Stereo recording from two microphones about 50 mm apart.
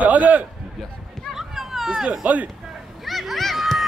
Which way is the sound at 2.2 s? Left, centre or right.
Right.